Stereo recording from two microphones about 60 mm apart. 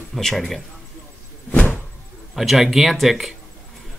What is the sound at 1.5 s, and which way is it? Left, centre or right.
Vehicle, left.